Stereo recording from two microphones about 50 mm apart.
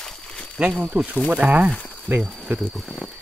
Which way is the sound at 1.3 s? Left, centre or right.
Right.